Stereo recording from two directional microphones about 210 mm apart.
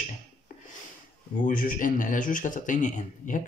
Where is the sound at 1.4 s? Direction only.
40° left (ahead or behind).